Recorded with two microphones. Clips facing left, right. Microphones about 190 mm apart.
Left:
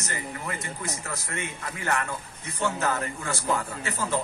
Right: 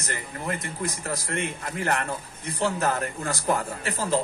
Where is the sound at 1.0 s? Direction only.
35° right (ahead or behind).